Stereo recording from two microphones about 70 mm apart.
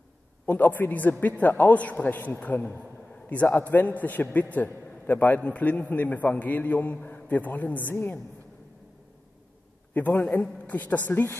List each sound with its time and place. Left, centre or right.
0.5 s a man's voice: left
2.6 s a sound: centre
3.4 s a man's voice: left
9.9 s a man's voice: left